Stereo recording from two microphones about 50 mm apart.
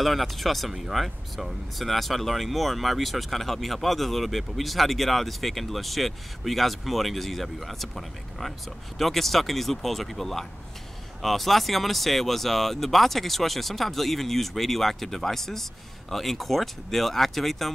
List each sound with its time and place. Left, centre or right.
0.0 s speech: centre